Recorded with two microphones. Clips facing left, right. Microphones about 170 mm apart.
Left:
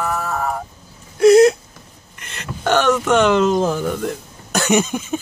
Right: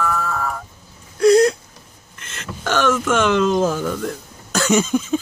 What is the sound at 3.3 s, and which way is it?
Speech, 55° left (ahead or behind).